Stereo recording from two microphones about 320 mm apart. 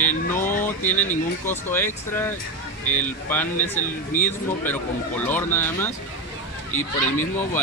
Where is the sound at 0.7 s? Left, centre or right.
Centre.